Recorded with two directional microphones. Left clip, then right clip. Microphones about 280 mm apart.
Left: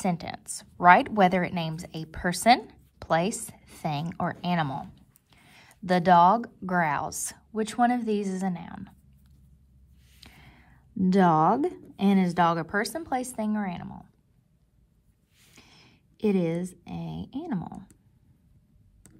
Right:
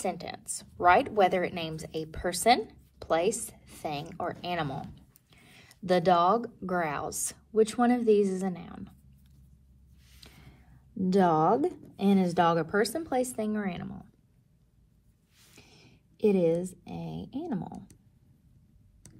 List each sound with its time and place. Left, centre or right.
0.0 s a woman's voice: left
10.2 s a sound: left
11.1 s a woman's voice: left
15.6 s a woman's voice: left